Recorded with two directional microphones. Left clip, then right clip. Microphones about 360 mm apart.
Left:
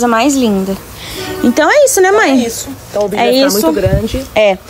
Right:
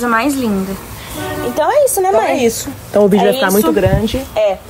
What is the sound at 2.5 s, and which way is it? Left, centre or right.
Speech, right.